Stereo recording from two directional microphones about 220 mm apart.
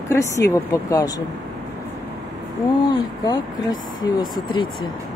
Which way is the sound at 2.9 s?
20° left (ahead or behind).